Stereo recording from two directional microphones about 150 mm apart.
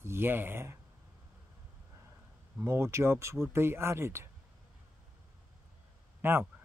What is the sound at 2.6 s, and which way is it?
Speech, 15° right (ahead or behind).